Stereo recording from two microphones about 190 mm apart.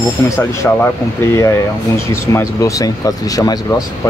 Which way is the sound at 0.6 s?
5° left (ahead or behind).